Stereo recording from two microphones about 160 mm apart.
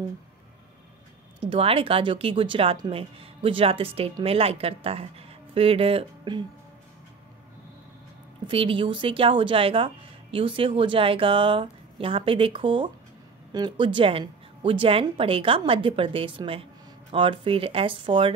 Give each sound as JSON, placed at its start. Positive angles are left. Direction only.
{"t": 1.4, "sound": "speech", "side_deg": -35}
{"t": 8.5, "sound": "speech", "side_deg": -35}